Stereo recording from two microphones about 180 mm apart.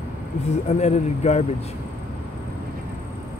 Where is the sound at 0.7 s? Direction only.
40° left (ahead or behind).